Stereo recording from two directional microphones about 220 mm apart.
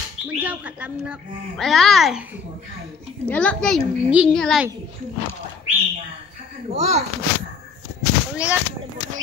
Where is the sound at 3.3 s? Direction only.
5° left (ahead or behind).